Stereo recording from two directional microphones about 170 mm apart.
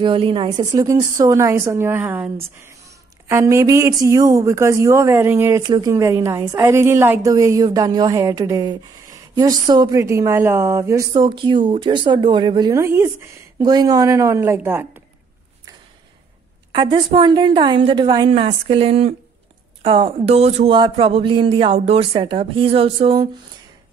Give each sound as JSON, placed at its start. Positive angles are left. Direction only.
{"t": 0.0, "sound": "a woman's voice", "side_deg": -30}
{"t": 5.6, "sound": "a woman's voice", "side_deg": -25}
{"t": 11.1, "sound": "a woman's voice", "side_deg": -30}
{"t": 16.7, "sound": "a woman's voice", "side_deg": -25}